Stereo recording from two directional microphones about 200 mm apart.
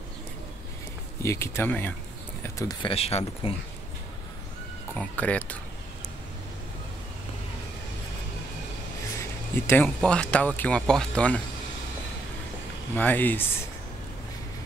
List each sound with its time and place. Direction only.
1.2 s speech: 15° left (ahead or behind); by 3.5 s 30° left (ahead or behind)
4.9 s speech: 5° left (ahead or behind)
9.2 s a sound: 10° left (ahead or behind)
9.9 s speech: 5° left (ahead or behind)
12.9 s speech: 10° left (ahead or behind)